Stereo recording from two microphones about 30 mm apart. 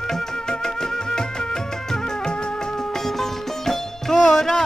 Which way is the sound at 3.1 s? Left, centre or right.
Centre.